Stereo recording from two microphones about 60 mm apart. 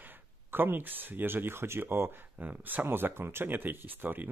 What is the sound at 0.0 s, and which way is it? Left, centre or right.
Speech, right.